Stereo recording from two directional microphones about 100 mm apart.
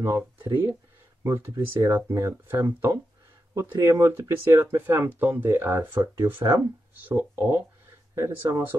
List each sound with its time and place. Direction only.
0.0 s speech: 30° right (ahead or behind)